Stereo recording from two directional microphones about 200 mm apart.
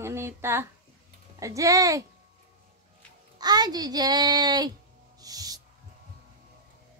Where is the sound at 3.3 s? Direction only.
20° right (ahead or behind).